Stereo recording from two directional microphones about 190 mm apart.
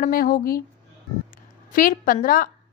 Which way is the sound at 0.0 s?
50° left (ahead or behind).